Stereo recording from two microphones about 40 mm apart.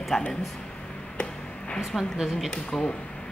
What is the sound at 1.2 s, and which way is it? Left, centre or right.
Music, left.